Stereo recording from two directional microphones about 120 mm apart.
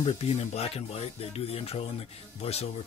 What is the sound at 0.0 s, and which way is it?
Speech, 60° left (ahead or behind).